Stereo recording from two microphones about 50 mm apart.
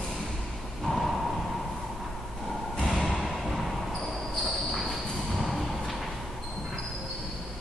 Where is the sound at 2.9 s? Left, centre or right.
Centre.